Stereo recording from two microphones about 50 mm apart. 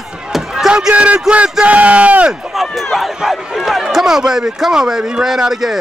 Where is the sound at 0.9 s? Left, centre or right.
Right.